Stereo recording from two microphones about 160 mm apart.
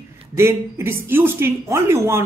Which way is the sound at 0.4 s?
15° right (ahead or behind).